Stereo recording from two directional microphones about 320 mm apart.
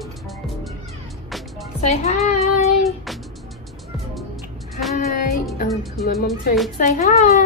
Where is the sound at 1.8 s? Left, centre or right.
Left.